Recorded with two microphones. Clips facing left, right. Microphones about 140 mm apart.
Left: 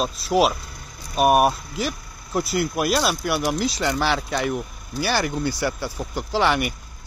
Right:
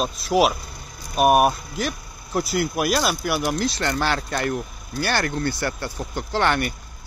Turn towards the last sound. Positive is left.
turn(degrees=5)  # may be behind; listen again after turning